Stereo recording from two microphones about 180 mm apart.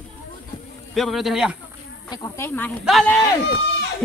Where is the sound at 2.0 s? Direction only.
20° left (ahead or behind).